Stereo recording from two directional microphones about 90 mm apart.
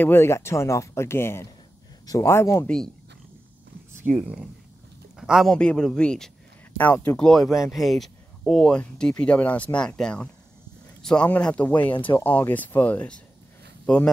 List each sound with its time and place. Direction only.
0.0 s speech: 25° left (ahead or behind)
2.6 s speech: 10° left (ahead or behind)
4.1 s speech: 5° left (ahead or behind)
5.1 s speech: 5° right (ahead or behind)
5.5 s speech: 10° left (ahead or behind)
6.8 s speech: 20° left (ahead or behind)
7.2 s a man's voice: 5° left (ahead or behind)